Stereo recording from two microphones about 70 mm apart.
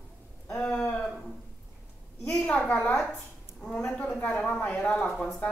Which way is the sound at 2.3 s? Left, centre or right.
Centre.